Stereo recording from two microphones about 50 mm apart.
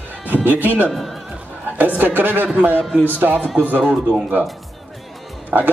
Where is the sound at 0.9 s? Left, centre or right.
Centre.